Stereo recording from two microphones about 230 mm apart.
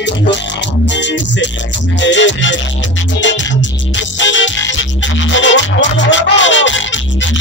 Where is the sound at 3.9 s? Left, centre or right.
Left.